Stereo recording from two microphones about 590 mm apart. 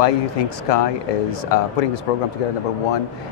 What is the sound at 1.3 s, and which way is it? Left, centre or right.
Speech, left.